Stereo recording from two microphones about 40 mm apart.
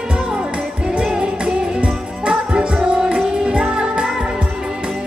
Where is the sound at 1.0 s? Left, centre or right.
Right.